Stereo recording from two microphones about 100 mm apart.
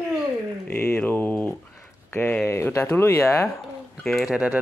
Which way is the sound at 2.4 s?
25° left (ahead or behind).